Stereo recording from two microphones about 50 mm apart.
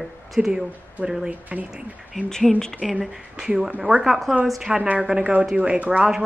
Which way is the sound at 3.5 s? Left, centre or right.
Right.